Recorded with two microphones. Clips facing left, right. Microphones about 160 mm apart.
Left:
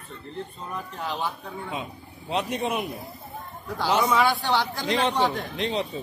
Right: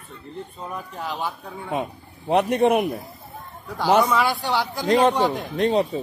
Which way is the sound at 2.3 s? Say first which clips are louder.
Right 9 dB; 65° right (ahead or behind).